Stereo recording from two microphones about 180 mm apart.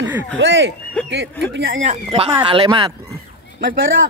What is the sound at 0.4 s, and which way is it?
Speech, 90° right.